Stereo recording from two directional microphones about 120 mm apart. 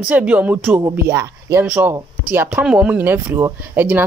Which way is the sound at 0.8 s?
25° right (ahead or behind).